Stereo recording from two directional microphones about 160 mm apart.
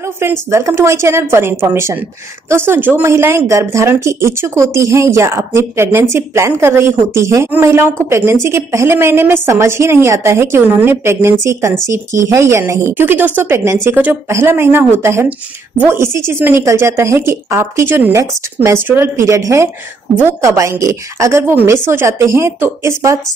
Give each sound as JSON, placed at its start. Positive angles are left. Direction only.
{"t": 0.2, "sound": "speech", "side_deg": -15}